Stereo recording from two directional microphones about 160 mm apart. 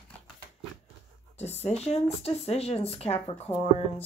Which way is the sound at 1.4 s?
40° left (ahead or behind).